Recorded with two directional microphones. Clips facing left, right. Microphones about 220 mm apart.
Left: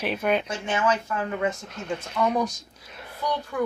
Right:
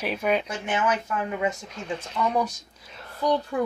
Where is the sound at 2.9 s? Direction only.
5° left (ahead or behind).